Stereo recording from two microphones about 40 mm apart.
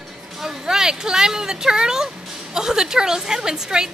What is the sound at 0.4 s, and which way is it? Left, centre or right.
A woman's voice, centre.